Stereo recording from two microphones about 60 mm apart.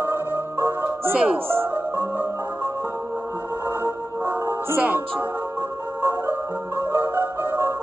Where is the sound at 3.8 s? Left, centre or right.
Right.